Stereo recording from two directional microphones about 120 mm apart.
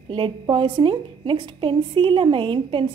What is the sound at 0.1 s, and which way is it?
A woman's voice, 45° right (ahead or behind).